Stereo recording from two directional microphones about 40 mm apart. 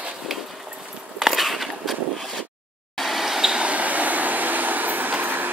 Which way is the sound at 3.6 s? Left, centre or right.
Right.